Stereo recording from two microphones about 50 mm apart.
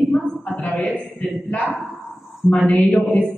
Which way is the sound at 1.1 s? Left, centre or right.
Left.